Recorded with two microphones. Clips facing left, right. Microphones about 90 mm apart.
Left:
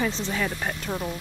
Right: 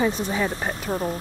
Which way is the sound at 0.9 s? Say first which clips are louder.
Right 6 dB; 40° right (ahead or behind).